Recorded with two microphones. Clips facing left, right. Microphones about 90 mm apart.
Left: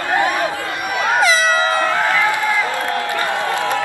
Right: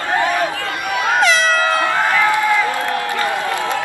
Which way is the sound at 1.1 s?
5° left (ahead or behind).